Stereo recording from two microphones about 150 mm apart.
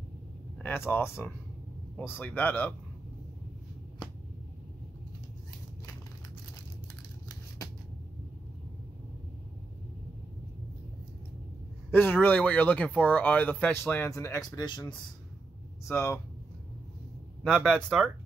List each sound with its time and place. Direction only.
0.6 s speech: 15° left (ahead or behind)
11.9 s speech: 15° left (ahead or behind); by 15.0 s 30° left (ahead or behind)
15.9 s speech: 15° left (ahead or behind)
17.4 s speech: 5° left (ahead or behind)